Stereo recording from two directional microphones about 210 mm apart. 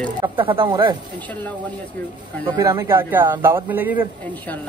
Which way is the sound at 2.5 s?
15° right (ahead or behind).